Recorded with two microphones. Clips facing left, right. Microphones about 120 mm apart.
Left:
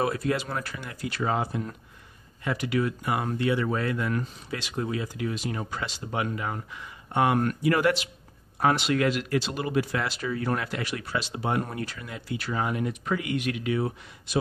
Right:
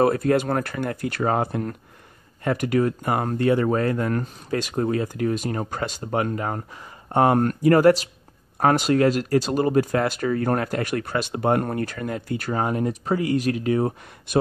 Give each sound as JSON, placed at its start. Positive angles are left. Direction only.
{"t": 0.0, "sound": "speech", "side_deg": -45}